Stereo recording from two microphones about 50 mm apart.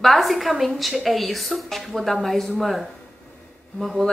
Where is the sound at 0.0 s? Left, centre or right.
Centre.